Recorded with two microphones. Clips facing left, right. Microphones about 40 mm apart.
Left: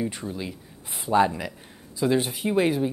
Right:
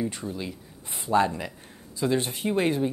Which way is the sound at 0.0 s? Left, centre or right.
Centre.